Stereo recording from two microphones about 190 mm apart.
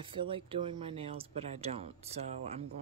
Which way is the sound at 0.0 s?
25° right (ahead or behind).